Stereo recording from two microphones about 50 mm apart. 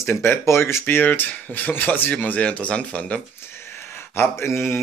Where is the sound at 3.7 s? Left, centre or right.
Left.